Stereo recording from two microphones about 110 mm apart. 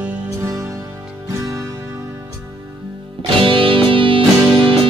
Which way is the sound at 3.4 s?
55° right (ahead or behind).